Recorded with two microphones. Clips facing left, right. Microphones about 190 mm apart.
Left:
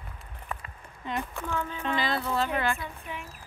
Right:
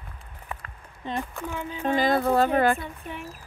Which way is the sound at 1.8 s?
45° right (ahead or behind).